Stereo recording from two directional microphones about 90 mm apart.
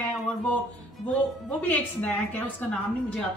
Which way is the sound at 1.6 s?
15° left (ahead or behind).